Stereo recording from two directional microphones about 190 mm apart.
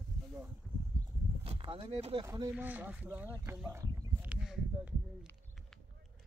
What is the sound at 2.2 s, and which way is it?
Speech, 20° right (ahead or behind).